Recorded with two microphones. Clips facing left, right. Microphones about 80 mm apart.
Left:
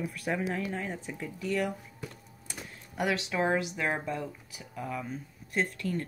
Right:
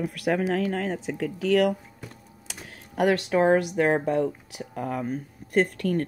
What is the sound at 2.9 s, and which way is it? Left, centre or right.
Speech, right.